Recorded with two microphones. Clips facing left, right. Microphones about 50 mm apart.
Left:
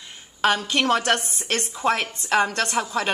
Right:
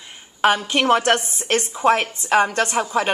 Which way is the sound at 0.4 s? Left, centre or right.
Centre.